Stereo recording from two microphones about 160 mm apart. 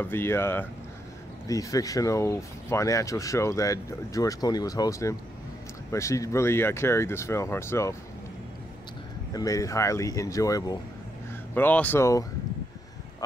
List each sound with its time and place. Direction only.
0.0 s speech: 15° left (ahead or behind)
9.3 s speech: 20° left (ahead or behind)
11.5 s speech: 10° left (ahead or behind)